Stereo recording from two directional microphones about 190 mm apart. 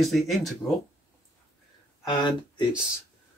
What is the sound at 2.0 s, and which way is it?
Speech, 25° left (ahead or behind).